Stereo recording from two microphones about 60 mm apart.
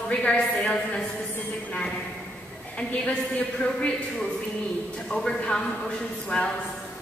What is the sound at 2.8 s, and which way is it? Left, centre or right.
Speech, left.